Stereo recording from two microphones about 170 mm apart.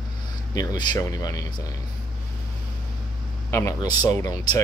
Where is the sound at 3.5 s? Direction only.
15° left (ahead or behind).